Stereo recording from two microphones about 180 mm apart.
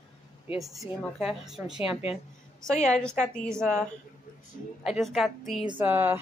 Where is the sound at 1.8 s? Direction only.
30° left (ahead or behind).